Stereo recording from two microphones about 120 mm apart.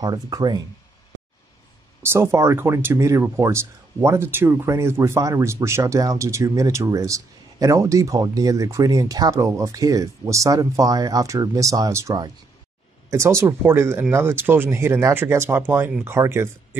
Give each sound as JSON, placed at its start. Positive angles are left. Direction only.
{"t": 0.0, "sound": "speech", "side_deg": -35}
{"t": 2.0, "sound": "speech", "side_deg": -20}